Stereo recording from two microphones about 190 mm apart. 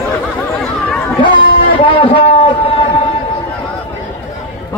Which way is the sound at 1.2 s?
25° left (ahead or behind).